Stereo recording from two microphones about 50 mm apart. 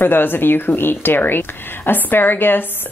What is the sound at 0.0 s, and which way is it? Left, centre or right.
Speech, left.